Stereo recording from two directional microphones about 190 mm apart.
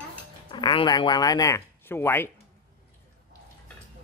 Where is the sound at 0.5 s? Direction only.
25° left (ahead or behind).